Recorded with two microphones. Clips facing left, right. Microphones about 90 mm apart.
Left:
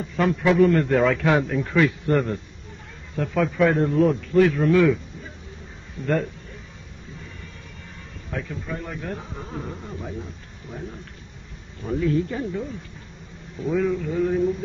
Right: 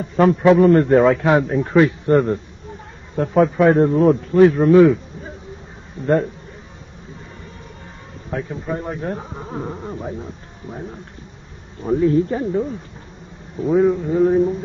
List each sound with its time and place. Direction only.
0.0 s speech: 35° right (ahead or behind)
8.3 s speech: 30° right (ahead or behind)